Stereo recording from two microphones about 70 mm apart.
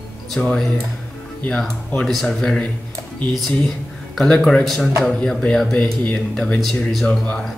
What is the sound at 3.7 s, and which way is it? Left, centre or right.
A man's voice, centre.